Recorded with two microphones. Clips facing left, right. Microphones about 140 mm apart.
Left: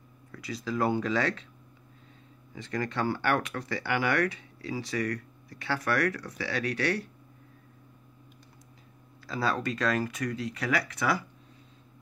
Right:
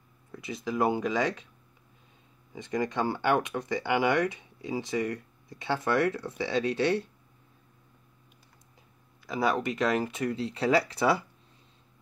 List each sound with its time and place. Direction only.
0.3 s speech: 20° right (ahead or behind)
2.5 s speech: 20° right (ahead or behind)
9.2 s speech: 15° right (ahead or behind)